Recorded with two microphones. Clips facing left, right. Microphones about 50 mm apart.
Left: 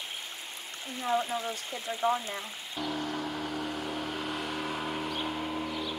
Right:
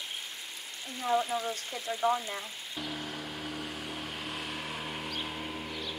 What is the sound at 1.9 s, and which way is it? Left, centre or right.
Speech, centre.